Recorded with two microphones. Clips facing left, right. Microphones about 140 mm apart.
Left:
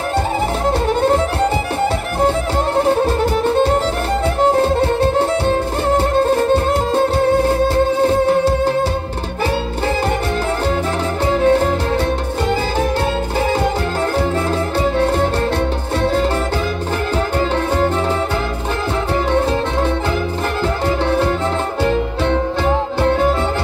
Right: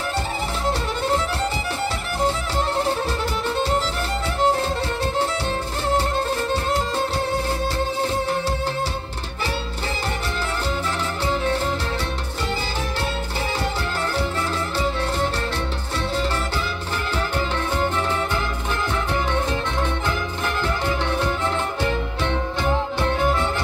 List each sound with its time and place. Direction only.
0.7 s music: 50° left (ahead or behind)
2.2 s music: 50° left (ahead or behind)
11.2 s music: 50° left (ahead or behind)
14.8 s music: 50° left (ahead or behind)
20.6 s music: 40° left (ahead or behind)